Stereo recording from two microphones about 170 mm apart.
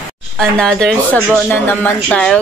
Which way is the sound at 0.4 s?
5° left (ahead or behind).